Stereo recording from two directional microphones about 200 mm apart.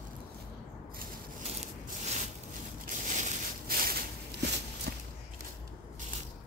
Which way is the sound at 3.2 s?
45° right (ahead or behind).